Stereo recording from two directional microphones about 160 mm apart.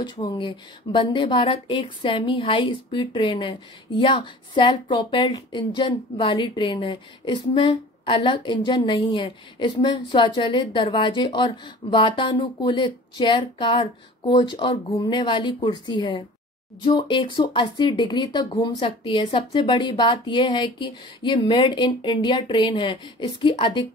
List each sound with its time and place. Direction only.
0.0 s speech: 30° left (ahead or behind)